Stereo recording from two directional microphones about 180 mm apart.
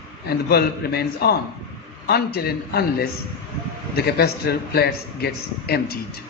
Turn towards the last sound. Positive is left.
turn(degrees=60)  # may be behind; listen again after turning